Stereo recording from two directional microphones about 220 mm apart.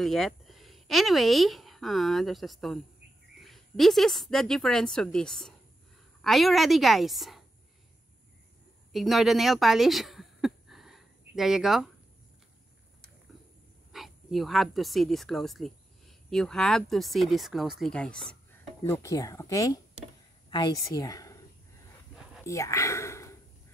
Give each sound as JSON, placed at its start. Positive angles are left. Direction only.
{"t": 0.0, "sound": "a woman's voice", "side_deg": 0}
{"t": 8.9, "sound": "speech", "side_deg": 0}
{"t": 13.9, "sound": "speech", "side_deg": 0}
{"t": 18.9, "sound": "a woman's voice", "side_deg": 15}
{"t": 22.4, "sound": "whispering", "side_deg": 15}